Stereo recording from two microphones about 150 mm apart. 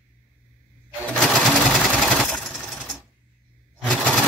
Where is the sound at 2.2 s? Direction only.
Centre (ahead or behind).